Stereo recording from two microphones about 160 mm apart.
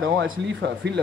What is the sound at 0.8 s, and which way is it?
Speech, 90° right.